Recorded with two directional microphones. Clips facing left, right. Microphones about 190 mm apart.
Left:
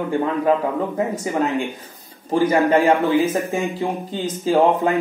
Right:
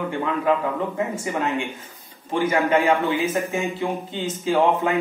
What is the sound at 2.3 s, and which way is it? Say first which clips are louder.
Speech: left 4 dB; 35° left (ahead or behind).